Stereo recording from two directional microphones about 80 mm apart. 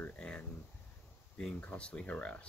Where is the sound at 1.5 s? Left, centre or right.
Centre.